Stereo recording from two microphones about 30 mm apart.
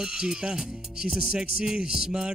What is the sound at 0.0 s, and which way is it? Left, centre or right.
Speech, right.